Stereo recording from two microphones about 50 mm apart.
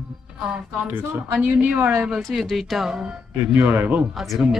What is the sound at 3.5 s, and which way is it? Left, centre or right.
Speech, right.